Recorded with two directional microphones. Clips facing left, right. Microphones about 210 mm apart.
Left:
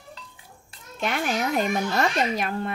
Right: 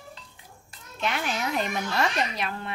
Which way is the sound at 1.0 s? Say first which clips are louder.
Left 3 dB; 50° left (ahead or behind).